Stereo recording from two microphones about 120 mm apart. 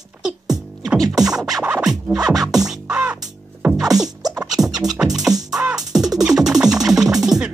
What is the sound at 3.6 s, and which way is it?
Sneeze, 25° right (ahead or behind).